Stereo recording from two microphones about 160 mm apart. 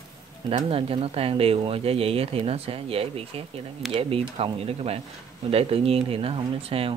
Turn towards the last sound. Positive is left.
turn(degrees=-35)  # may be behind; listen again after turning